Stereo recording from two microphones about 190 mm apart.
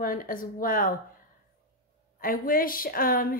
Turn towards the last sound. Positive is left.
turn(degrees=50)  # may be behind; listen again after turning